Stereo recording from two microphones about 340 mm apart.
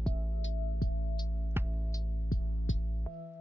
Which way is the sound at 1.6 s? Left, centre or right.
Centre.